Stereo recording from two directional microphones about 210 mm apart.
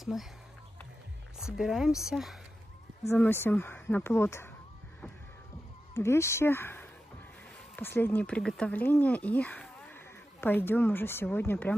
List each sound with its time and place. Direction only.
0.0 s speech: centre (ahead or behind)
1.4 s speech: centre (ahead or behind)
3.1 s speech: 10° left (ahead or behind)
5.9 s speech: 15° left (ahead or behind)